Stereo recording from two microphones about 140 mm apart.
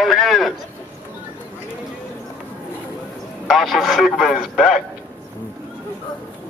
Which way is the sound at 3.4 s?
Centre (ahead or behind).